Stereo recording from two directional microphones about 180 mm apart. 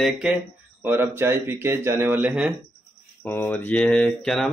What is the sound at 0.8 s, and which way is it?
Speech, 10° right (ahead or behind).